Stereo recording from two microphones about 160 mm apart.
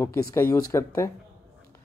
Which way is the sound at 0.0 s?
20° left (ahead or behind).